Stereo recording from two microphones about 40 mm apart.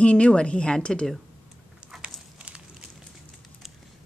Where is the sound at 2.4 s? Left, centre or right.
Right.